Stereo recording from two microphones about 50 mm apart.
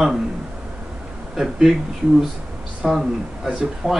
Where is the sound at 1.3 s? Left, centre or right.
Centre.